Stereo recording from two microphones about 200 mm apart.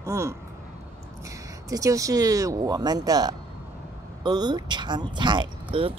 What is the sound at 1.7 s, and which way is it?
Speech, 15° right (ahead or behind).